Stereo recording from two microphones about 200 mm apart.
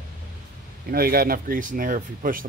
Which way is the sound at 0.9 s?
50° right (ahead or behind).